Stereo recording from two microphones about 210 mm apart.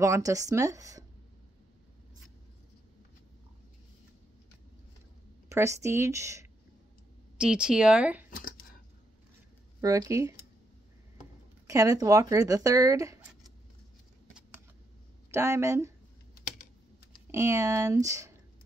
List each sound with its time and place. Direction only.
0.0 s speech: 15° right (ahead or behind)
5.5 s speech: 15° right (ahead or behind)
9.8 s speech: 15° right (ahead or behind)
11.6 s speech: 15° right (ahead or behind)
15.3 s speech: 15° right (ahead or behind)
17.3 s speech: 15° right (ahead or behind)